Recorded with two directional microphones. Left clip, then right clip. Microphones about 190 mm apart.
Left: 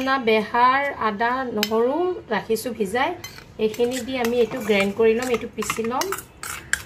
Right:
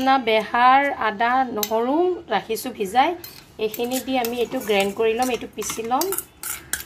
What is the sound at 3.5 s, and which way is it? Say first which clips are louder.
Cutlery: left 2 dB; 35° right (ahead or behind).